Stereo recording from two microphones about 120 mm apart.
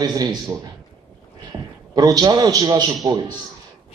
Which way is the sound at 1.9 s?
30° right (ahead or behind).